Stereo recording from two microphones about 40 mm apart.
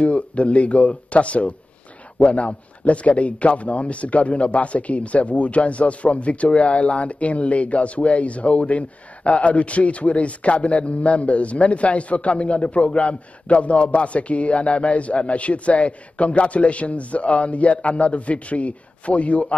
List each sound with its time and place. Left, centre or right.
0.0 s a man's voice: left